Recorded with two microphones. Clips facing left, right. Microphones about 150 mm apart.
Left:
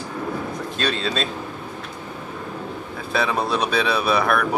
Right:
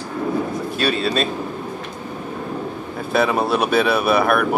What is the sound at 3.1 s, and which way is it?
Speech, 5° right (ahead or behind).